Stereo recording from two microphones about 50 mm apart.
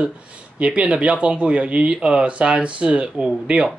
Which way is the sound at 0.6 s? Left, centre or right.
Right.